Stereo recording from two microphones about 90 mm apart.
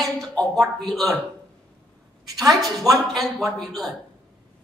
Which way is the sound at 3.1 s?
Centre (ahead or behind).